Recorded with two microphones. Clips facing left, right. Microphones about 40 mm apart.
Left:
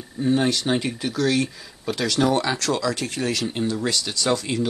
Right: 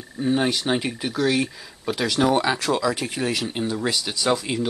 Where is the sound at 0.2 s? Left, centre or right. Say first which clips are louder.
Left 1 dB; centre.